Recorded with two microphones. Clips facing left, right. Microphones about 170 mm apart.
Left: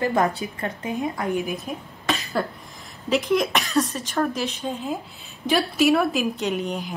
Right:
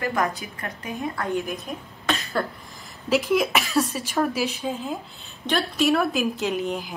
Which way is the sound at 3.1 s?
5° right (ahead or behind).